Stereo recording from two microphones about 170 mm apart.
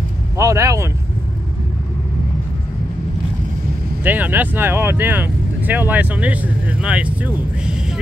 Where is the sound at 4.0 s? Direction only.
10° right (ahead or behind).